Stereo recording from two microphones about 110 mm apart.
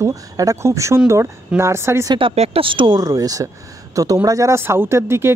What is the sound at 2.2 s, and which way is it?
Speech, 65° right (ahead or behind).